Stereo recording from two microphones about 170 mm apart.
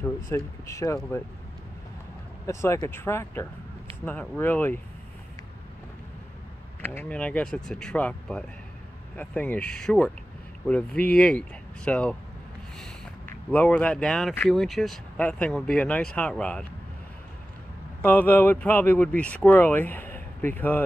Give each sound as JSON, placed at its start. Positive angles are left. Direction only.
{"t": 0.0, "sound": "speech", "side_deg": 15}
{"t": 2.4, "sound": "speech", "side_deg": 15}
{"t": 6.9, "sound": "speech", "side_deg": 10}
{"t": 13.5, "sound": "speech", "side_deg": 10}
{"t": 18.0, "sound": "speech", "side_deg": 10}